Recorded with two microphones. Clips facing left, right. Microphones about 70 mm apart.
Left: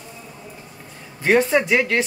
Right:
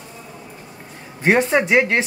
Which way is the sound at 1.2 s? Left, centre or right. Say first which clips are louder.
Right 1 dB; right.